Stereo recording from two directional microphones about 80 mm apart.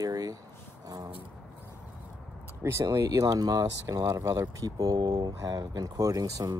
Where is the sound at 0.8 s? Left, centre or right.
Right.